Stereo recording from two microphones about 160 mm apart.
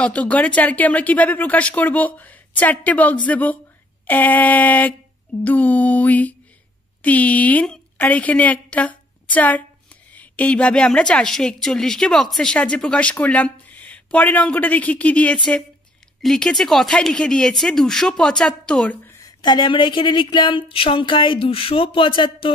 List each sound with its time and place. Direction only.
0.0 s a woman's voice: 10° left (ahead or behind)
19.0 s speech: 25° left (ahead or behind)